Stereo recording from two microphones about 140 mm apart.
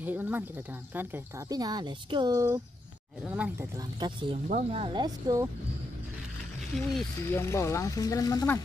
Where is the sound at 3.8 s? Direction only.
35° right (ahead or behind).